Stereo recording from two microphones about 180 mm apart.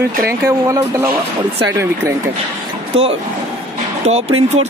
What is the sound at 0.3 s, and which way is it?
Speech, 15° right (ahead or behind).